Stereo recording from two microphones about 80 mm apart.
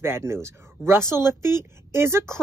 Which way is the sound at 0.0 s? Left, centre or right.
Right.